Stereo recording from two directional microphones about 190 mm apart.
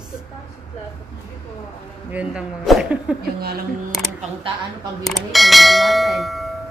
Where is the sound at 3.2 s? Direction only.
55° right (ahead or behind).